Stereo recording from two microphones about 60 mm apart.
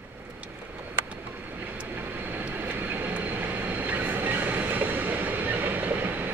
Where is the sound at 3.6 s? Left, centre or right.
Right.